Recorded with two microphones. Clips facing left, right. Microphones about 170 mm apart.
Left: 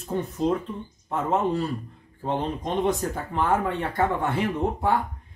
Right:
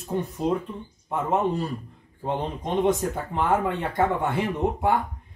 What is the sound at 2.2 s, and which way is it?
Speech, 15° right (ahead or behind).